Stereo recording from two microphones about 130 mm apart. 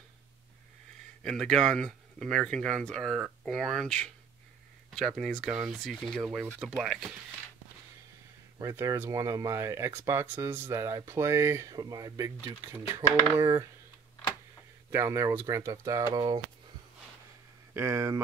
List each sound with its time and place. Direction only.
1.2 s speech: 5° left (ahead or behind)
8.5 s speech: 25° right (ahead or behind)
14.9 s speech: 20° right (ahead or behind)
17.7 s speech: 20° right (ahead or behind)